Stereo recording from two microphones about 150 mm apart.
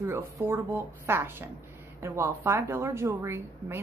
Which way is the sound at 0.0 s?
20° right (ahead or behind).